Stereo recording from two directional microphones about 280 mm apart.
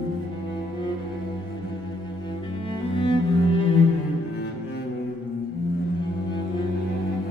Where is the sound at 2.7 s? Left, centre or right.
Centre.